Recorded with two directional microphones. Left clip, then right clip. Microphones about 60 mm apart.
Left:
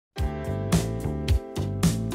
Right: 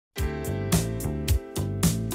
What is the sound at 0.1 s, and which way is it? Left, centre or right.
Music, centre.